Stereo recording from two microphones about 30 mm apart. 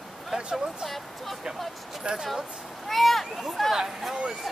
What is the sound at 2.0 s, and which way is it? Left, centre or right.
Speech, right.